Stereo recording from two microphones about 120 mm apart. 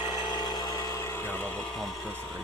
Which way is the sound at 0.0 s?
40° left (ahead or behind).